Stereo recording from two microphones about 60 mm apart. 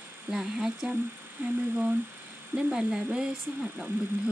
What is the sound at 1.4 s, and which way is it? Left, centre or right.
Speech, right.